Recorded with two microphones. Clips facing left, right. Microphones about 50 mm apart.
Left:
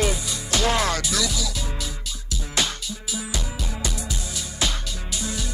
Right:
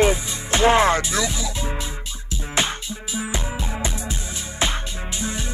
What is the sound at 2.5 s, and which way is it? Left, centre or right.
Music, right.